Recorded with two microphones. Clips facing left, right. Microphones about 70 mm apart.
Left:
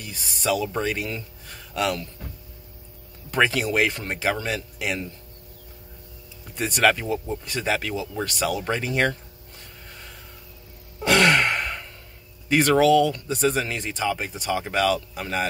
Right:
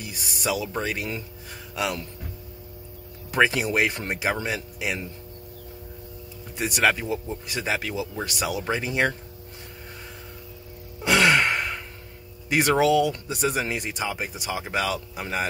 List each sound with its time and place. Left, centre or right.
0.1 s speech: centre
3.3 s a sound: centre
3.6 s speech: centre
4.7 s speech: centre
6.5 s speech: centre
11.0 s gasp: centre
12.4 s speech: centre